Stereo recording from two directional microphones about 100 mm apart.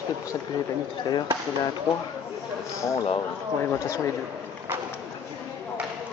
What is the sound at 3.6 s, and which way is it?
Speech, 30° left (ahead or behind).